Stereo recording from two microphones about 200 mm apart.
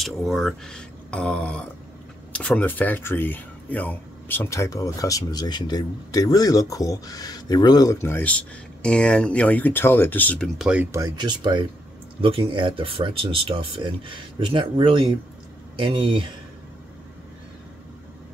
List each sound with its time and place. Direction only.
0.0 s speech: centre (ahead or behind)
10.7 s speech: 10° right (ahead or behind)